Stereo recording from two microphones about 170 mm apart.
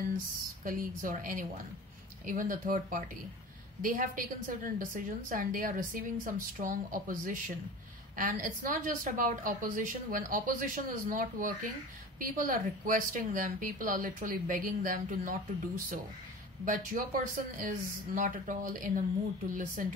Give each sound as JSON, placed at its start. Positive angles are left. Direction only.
{"t": 0.7, "sound": "a woman's voice", "side_deg": -55}